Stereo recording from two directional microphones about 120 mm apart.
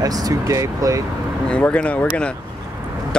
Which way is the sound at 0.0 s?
30° right (ahead or behind).